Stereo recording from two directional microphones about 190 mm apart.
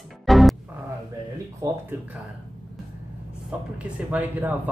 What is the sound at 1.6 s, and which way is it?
Speech, 20° right (ahead or behind).